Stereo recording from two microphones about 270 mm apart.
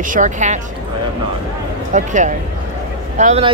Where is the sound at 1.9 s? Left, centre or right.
Right.